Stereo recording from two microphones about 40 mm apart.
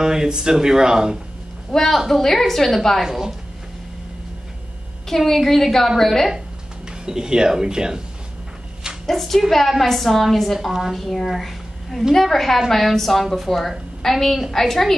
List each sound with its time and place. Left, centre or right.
0.0 s speech: centre
1.7 s a woman's voice: centre
3.0 s speech: centre
5.0 s a woman's voice: centre
6.9 s speech: centre
9.0 s a woman's voice: centre
10.7 s speech: centre
11.0 s a woman's voice: centre